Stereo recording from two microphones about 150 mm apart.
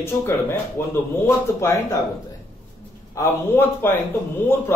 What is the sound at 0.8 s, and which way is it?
Speech, 15° left (ahead or behind).